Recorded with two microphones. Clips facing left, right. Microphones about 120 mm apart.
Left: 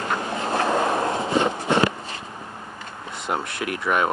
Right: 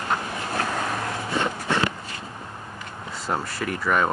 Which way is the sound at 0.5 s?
30° left (ahead or behind).